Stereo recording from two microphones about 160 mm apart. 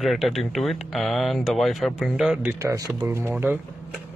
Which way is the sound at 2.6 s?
20° right (ahead or behind).